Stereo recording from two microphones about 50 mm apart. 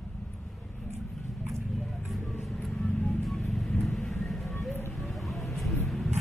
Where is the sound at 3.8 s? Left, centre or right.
Centre.